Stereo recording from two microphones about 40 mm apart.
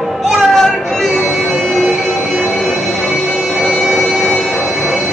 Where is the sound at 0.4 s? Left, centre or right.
Centre.